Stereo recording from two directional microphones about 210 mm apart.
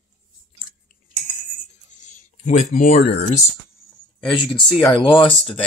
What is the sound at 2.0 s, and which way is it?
Speech, 35° left (ahead or behind).